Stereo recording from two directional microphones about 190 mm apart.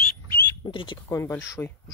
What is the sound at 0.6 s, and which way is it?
Speech, 25° left (ahead or behind).